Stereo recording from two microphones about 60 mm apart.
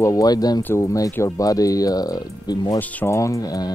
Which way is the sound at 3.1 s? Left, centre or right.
Left.